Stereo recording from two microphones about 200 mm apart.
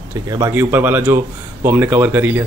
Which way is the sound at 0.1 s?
15° right (ahead or behind).